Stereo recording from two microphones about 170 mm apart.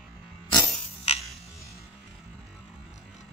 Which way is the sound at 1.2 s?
Centre (ahead or behind).